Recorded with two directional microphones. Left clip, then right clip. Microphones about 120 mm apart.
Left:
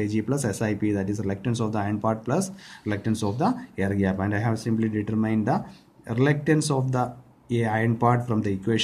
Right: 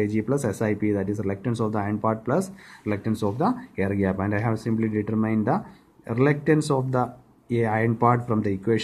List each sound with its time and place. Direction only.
0.0 s speech: 45° right (ahead or behind)